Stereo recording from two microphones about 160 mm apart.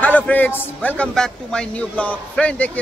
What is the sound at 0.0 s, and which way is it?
A man's voice, 10° left (ahead or behind).